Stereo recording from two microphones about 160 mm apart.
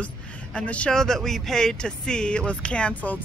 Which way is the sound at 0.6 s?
5° left (ahead or behind).